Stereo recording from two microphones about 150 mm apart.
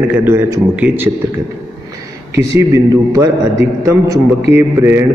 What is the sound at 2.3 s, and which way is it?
A man's voice, 20° right (ahead or behind).